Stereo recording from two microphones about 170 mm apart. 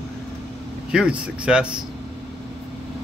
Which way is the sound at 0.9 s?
5° right (ahead or behind).